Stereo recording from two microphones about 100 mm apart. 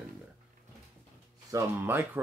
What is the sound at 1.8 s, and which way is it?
Speech, 20° right (ahead or behind).